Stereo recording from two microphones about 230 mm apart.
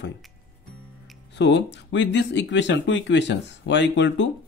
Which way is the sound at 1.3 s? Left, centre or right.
Left.